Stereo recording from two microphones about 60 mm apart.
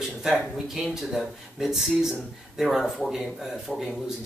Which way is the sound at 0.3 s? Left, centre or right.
Centre.